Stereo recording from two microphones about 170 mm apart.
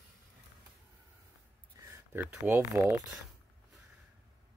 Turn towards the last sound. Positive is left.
turn(degrees=-15)  # may be behind; listen again after turning